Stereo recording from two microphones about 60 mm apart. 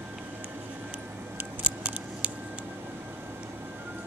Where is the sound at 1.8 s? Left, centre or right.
Right.